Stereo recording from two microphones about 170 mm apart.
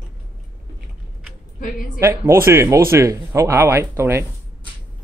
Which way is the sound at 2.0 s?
15° right (ahead or behind).